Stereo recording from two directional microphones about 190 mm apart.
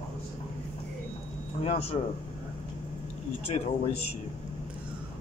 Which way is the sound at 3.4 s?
30° left (ahead or behind).